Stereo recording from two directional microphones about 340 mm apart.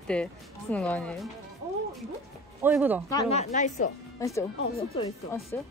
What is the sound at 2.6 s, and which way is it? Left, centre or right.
Speech, centre.